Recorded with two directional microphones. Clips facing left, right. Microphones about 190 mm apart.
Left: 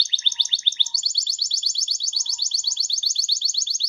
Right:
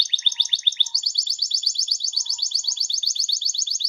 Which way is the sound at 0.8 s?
15° right (ahead or behind).